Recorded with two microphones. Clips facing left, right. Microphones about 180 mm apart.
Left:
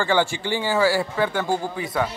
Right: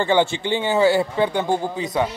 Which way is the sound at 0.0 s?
20° right (ahead or behind).